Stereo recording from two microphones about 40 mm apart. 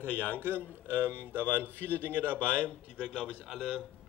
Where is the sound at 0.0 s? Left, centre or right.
Left.